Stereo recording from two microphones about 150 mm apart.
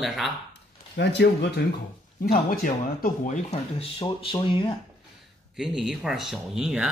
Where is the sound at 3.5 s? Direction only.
40° left (ahead or behind).